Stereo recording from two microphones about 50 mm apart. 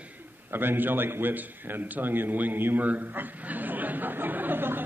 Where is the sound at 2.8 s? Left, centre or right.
Right.